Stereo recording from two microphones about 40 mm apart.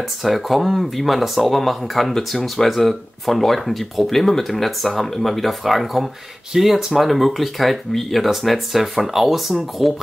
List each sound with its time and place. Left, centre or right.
0.2 s speech: centre